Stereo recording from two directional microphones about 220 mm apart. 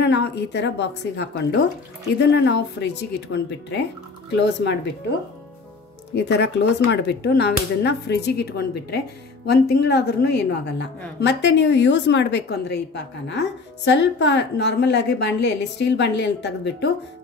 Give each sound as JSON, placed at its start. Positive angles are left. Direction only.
{"t": 0.0, "sound": "a woman's voice", "side_deg": 50}
{"t": 6.1, "sound": "a woman's voice", "side_deg": 50}